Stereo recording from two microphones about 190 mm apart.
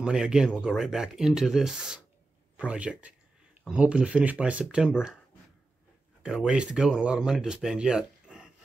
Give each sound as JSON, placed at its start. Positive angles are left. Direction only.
{"t": 0.0, "sound": "speech", "side_deg": -5}
{"t": 6.2, "sound": "speech", "side_deg": -5}